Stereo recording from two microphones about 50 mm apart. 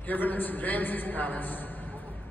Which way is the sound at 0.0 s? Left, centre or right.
Left.